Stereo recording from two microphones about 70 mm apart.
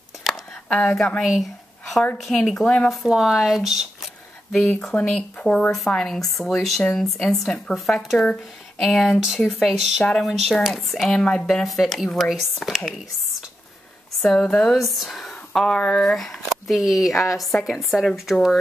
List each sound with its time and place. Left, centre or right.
0.3 s a sound: centre
0.7 s a woman's voice: centre
1.2 s a sound: centre
2.5 s speech: centre
2.9 s speech: centre
11.1 s speech: centre
11.4 s speech: centre
14.2 s speech: centre